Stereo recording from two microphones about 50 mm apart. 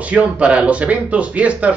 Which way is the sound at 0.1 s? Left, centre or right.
Right.